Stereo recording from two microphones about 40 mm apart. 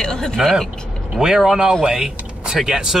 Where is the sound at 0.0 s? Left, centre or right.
Centre.